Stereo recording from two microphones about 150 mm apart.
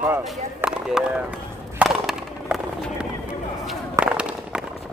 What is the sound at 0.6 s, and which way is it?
Chop, 5° right (ahead or behind).